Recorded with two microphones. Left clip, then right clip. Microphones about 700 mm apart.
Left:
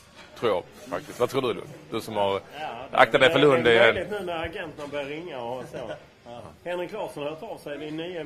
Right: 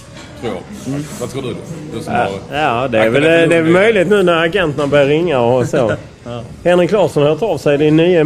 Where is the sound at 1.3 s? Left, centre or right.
Left.